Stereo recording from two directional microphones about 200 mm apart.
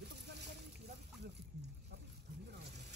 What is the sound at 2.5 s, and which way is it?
Zipper, 55° right (ahead or behind).